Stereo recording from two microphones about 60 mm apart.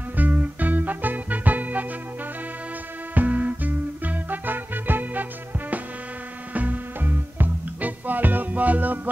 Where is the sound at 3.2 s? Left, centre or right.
Right.